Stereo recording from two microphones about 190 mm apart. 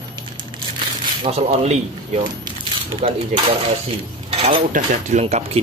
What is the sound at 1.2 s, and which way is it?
Speech, 30° right (ahead or behind).